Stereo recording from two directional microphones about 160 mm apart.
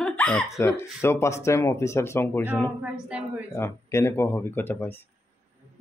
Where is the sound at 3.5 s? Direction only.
15° left (ahead or behind).